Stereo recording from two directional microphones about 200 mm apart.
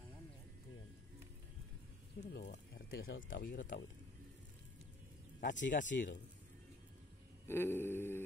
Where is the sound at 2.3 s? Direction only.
60° left (ahead or behind).